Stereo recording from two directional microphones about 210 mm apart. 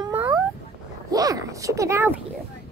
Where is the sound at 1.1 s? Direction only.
15° right (ahead or behind).